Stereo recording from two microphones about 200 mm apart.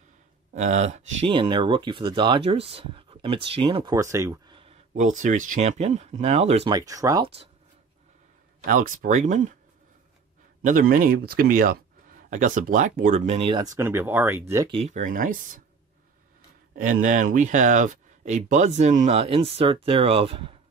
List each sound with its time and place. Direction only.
0.6 s speech: 35° right (ahead or behind)
3.9 s speech: 15° right (ahead or behind)
4.9 s speech: 40° right (ahead or behind)
6.7 s speech: 15° right (ahead or behind)
8.6 s speech: 40° right (ahead or behind)
10.6 s speech: 40° right (ahead or behind); by 14.7 s 15° right (ahead or behind)
14.7 s speech: 30° right (ahead or behind)
16.7 s speech: 40° right (ahead or behind)